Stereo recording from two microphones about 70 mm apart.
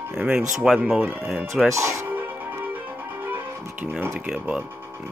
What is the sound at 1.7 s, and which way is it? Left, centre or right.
Speech, right.